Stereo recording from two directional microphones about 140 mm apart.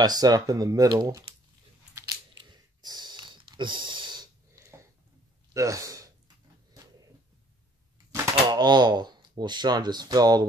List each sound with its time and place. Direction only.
0.0 s speech: 30° right (ahead or behind)
2.5 s snort: 30° right (ahead or behind)
5.5 s a sound: 20° right (ahead or behind)
8.1 s speech: 30° right (ahead or behind)